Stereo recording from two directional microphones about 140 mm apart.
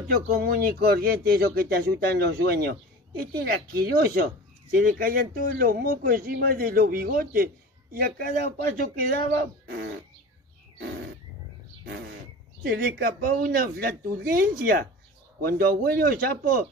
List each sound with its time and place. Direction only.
0.1 s a man's voice: 90° right
12.6 s a man's voice: 90° right